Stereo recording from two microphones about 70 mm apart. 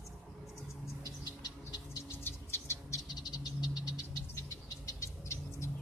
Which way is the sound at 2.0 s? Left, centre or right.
Left.